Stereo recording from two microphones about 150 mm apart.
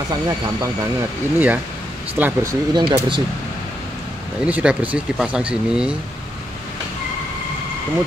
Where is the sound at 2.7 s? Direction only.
30° right (ahead or behind).